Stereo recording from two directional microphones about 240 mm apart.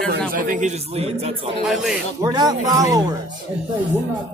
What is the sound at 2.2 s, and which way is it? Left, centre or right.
Speech, centre.